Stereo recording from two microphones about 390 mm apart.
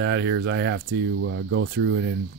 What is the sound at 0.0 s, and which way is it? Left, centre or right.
Speech, right.